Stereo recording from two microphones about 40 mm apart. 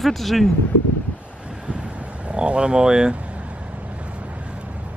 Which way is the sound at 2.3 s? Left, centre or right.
Right.